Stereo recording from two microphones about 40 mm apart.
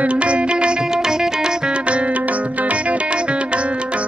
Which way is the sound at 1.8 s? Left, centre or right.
Right.